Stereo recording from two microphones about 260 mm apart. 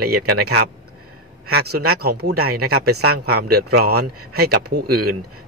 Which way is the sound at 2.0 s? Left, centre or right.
Right.